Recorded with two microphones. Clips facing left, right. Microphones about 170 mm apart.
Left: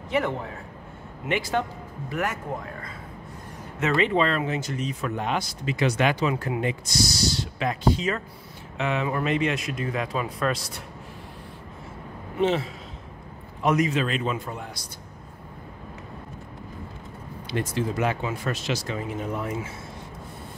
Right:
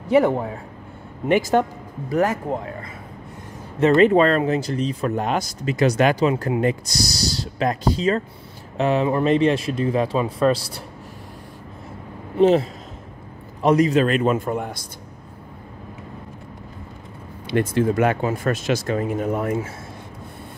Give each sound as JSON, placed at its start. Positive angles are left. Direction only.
{"t": 0.1, "sound": "speech", "side_deg": -35}
{"t": 3.8, "sound": "speech", "side_deg": -45}
{"t": 12.4, "sound": "speech", "side_deg": -40}
{"t": 14.0, "sound": "speech", "side_deg": -50}
{"t": 17.5, "sound": "speech", "side_deg": -55}